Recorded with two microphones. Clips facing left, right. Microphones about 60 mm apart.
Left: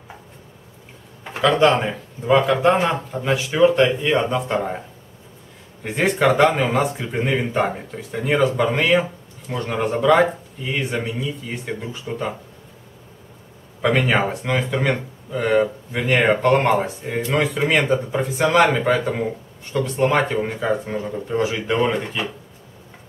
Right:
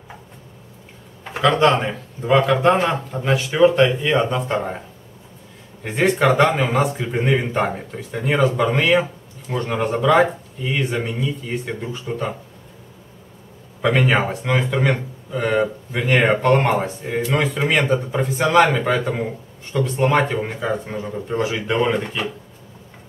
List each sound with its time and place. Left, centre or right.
1.3 s speech: centre
5.9 s speech: centre
13.7 s speech: centre